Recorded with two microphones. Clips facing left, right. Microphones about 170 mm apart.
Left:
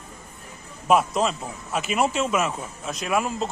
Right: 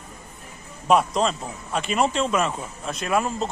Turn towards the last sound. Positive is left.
turn(degrees=5)  # may be behind; listen again after turning